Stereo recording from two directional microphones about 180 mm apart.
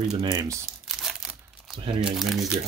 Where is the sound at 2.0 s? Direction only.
5° right (ahead or behind).